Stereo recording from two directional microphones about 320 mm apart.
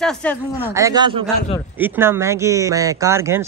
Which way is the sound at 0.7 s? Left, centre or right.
Centre.